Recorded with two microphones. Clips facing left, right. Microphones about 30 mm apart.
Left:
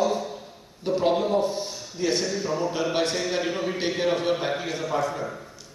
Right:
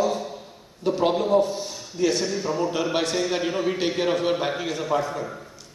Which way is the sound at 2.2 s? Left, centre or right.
Centre.